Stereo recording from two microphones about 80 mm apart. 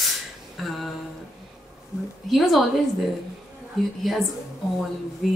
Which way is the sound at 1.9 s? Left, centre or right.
Left.